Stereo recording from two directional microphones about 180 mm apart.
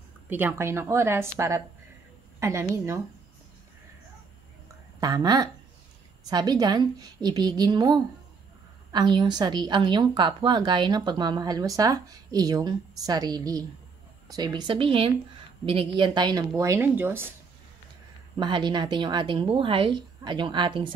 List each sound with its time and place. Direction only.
0.3 s a woman's voice: 10° right (ahead or behind)
2.4 s a woman's voice: 15° right (ahead or behind)
5.0 s a woman's voice: 25° right (ahead or behind)
18.4 s a woman's voice: 25° right (ahead or behind)